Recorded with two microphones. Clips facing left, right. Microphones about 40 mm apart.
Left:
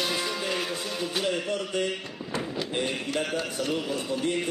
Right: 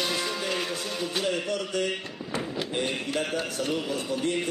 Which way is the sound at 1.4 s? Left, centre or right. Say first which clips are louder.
Even; centre.